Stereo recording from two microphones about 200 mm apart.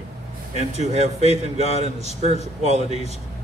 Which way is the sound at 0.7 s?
35° right (ahead or behind).